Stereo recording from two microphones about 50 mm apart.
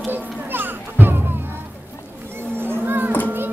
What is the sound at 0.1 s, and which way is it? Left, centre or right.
Children playing, right.